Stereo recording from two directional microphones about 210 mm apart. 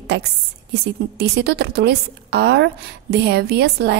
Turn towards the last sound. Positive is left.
turn(degrees=-50)  # may be behind; listen again after turning